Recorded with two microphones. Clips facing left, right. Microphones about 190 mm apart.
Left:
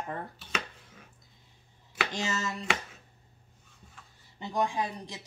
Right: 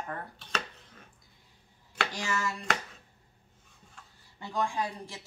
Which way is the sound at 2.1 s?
25° left (ahead or behind).